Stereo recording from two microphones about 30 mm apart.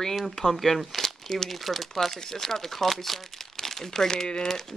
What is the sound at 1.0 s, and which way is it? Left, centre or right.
Crumpling, centre.